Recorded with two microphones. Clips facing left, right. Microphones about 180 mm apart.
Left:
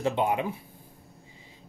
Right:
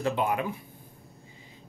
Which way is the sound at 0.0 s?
25° left (ahead or behind).